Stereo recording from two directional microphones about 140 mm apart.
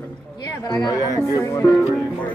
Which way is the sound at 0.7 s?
30° left (ahead or behind).